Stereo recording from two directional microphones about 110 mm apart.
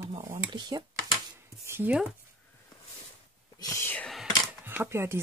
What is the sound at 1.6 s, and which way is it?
Speech, 20° right (ahead or behind).